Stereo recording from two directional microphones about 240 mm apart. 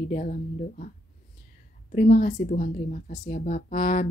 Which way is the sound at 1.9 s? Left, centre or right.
Left.